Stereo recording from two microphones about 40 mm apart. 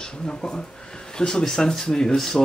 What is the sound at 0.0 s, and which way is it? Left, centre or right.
Speech, centre.